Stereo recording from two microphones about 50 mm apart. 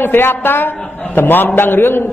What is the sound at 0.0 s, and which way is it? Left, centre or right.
A woman's voice, left.